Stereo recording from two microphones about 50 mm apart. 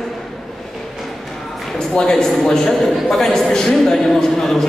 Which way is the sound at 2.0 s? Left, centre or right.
Centre.